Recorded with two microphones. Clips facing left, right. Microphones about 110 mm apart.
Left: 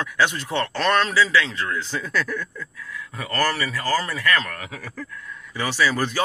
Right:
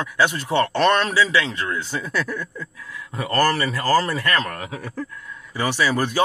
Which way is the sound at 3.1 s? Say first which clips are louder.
Right 4 dB; 30° right (ahead or behind).